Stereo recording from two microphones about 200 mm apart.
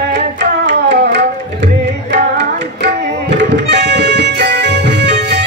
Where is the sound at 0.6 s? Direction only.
60° right (ahead or behind).